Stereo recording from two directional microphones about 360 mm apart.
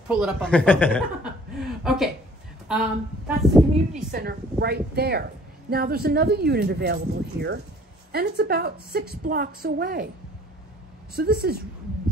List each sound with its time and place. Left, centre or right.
0.1 s a woman's voice: centre
2.7 s a woman's voice: centre
4.1 s speech: right
11.1 s speech: right